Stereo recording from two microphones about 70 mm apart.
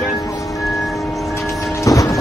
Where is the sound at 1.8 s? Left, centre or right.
Left.